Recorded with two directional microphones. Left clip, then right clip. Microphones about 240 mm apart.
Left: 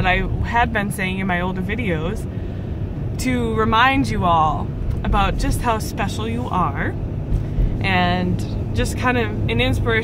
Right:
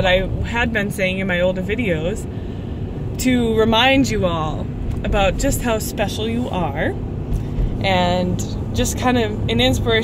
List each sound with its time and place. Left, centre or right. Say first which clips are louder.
0.0 s speech: right 3 dB; centre
3.3 s speech: right 3 dB; centre